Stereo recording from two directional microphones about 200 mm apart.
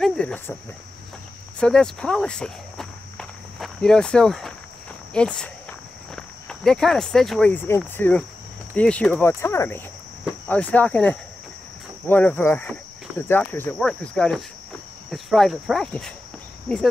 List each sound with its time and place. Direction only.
0.0 s cricket: 5° left (ahead or behind)
1.6 s walk: 5° left (ahead or behind)
5.1 s speech: 5° left (ahead or behind)